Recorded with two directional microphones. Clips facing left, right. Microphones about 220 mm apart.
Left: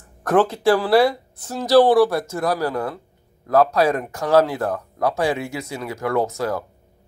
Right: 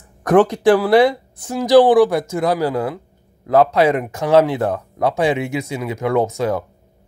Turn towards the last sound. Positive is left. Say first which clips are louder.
# right 4 dB
turn(degrees=-20)  # may be behind; listen again after turning